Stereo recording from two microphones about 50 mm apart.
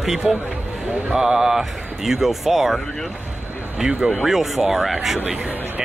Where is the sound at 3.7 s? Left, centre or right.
Centre.